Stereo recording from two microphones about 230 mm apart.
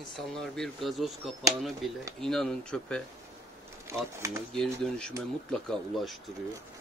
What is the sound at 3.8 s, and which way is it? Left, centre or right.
Speech, centre.